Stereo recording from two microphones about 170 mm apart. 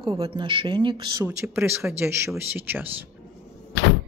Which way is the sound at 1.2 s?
15° right (ahead or behind).